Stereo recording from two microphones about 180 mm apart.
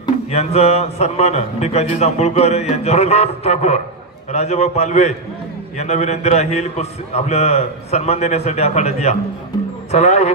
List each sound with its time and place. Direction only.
0.3 s a man's voice: 35° left (ahead or behind)